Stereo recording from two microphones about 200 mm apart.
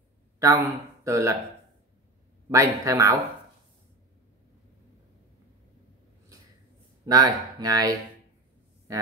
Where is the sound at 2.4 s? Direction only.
15° right (ahead or behind).